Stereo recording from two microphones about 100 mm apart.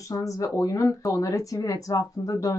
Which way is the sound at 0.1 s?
35° left (ahead or behind).